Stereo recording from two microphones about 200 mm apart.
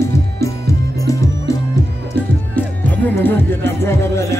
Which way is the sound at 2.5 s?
10° left (ahead or behind).